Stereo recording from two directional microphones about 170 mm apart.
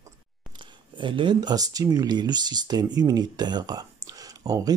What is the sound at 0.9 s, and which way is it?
Speech, 30° right (ahead or behind).